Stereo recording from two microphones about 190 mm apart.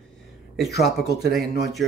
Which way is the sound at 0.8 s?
Centre (ahead or behind).